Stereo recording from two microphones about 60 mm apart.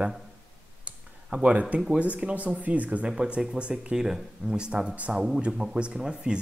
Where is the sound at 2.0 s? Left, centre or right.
Centre.